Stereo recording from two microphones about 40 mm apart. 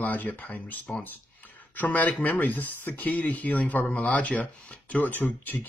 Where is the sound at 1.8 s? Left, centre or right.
Left.